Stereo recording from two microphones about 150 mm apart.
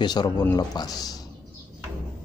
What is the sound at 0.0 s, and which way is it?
Speech, 30° left (ahead or behind).